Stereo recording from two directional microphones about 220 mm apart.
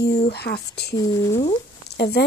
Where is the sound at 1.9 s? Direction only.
50° left (ahead or behind).